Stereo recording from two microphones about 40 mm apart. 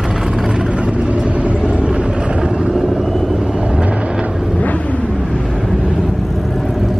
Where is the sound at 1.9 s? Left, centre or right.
Centre.